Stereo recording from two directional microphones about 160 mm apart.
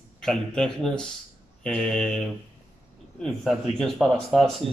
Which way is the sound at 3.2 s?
5° left (ahead or behind).